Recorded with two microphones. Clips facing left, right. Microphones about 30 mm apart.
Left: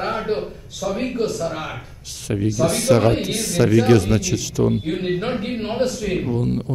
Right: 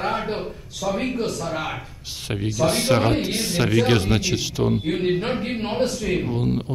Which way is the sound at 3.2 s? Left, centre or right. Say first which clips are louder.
Left 3 dB; right.